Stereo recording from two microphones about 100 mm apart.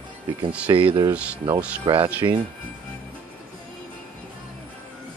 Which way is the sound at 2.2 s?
40° right (ahead or behind).